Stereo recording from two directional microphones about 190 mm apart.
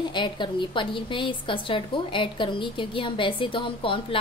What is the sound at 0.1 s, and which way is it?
A woman's voice, 25° left (ahead or behind).